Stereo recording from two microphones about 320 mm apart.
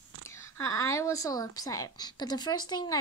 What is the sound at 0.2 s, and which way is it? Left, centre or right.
A woman's voice, centre.